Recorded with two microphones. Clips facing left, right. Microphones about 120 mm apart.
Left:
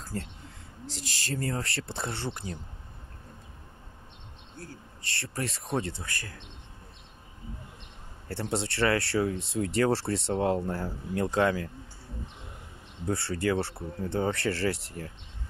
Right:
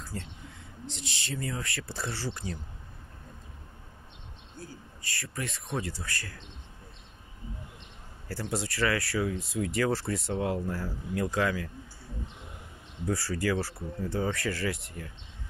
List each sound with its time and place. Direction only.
0.1 s speech: 50° left (ahead or behind); by 2.6 s 25° left (ahead or behind)
5.1 s speech: 30° left (ahead or behind)
8.3 s speech: 25° left (ahead or behind)
13.0 s speech: 25° left (ahead or behind)